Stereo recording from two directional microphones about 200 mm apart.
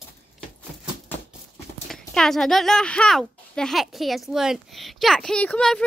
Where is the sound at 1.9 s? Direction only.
Centre (ahead or behind).